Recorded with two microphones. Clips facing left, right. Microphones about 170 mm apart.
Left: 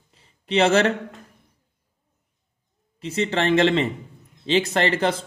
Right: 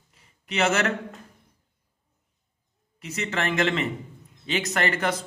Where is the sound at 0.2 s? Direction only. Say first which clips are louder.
Left 6 dB; 30° left (ahead or behind).